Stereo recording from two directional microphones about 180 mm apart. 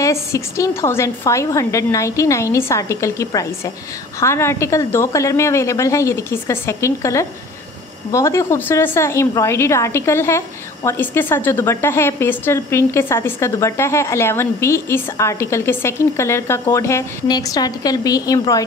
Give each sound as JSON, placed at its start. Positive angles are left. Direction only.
{"t": 0.0, "sound": "a woman's voice", "side_deg": 15}